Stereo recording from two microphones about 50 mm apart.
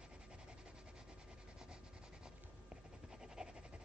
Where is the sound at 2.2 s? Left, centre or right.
Centre.